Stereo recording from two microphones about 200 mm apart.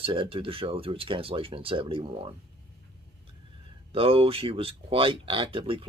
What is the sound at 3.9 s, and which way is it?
Speech, 30° right (ahead or behind).